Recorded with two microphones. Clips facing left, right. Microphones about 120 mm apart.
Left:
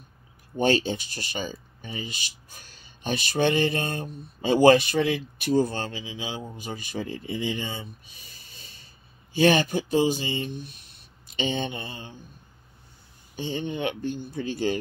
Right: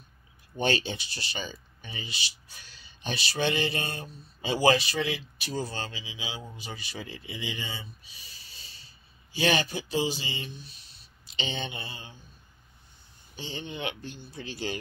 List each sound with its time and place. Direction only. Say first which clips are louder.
0.6 s speech: left 5 dB; 40° left (ahead or behind)
13.4 s speech: left 7 dB; 45° left (ahead or behind)